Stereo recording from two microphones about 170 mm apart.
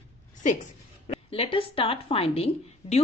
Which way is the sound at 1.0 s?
35° left (ahead or behind).